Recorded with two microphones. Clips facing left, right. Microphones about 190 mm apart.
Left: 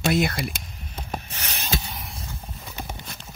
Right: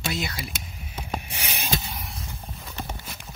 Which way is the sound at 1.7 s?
Centre (ahead or behind).